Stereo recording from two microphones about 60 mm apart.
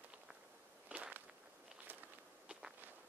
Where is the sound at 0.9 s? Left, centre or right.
Centre.